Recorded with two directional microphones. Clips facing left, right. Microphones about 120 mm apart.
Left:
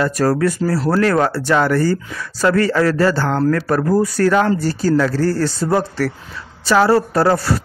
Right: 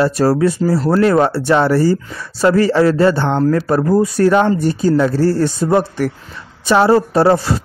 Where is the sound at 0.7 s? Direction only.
Centre (ahead or behind).